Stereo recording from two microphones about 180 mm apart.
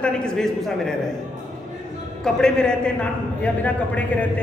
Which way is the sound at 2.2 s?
5° left (ahead or behind).